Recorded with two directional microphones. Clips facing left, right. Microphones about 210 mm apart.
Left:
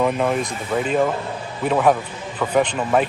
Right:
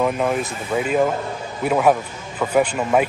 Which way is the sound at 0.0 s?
Centre (ahead or behind).